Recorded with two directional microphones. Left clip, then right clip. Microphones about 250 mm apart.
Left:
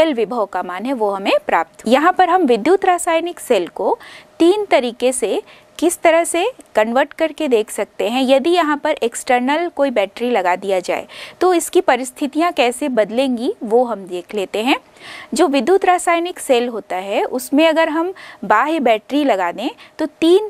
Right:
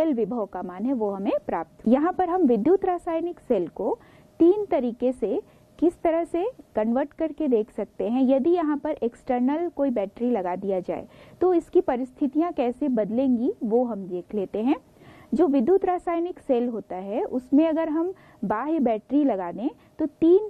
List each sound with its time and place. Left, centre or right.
0.0 s a woman's voice: centre
0.9 s a woman's voice: left
1.2 s a woman's voice: centre
3.7 s a woman's voice: left
4.4 s a woman's voice: centre
13.7 s a woman's voice: centre
14.1 s a woman's voice: centre